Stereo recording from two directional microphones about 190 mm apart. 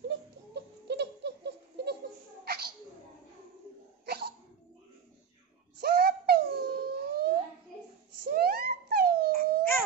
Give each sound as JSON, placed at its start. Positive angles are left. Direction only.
{"t": 0.8, "sound": "a sound", "side_deg": -65}
{"t": 4.0, "sound": "hiccup", "side_deg": -55}
{"t": 5.8, "sound": "wail", "side_deg": -55}
{"t": 8.2, "sound": "whimper", "side_deg": -55}